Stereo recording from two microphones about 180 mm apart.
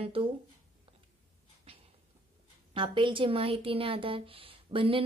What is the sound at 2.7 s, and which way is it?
Speech, 25° right (ahead or behind).